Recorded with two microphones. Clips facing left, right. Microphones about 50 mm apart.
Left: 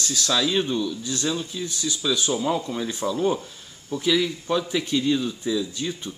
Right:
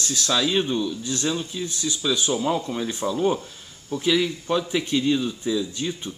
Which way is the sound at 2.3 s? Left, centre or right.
Centre.